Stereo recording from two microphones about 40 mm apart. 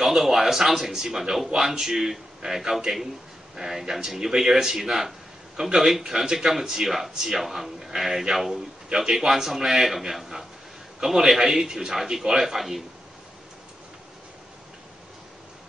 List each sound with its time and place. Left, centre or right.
0.0 s a man's voice: centre